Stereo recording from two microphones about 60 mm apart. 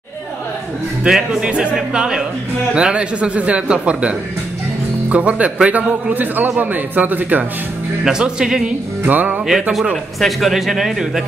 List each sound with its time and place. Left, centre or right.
1.0 s speech: centre; by 7.4 s right
8.0 s speech: centre
9.0 s speech: right
9.5 s speech: centre